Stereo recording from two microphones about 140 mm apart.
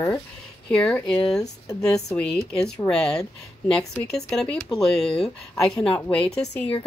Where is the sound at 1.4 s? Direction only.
25° left (ahead or behind).